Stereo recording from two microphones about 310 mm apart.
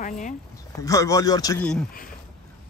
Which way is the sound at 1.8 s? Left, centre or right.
Left.